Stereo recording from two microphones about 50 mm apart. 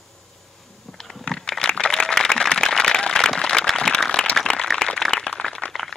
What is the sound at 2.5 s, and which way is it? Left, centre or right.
Applause, centre.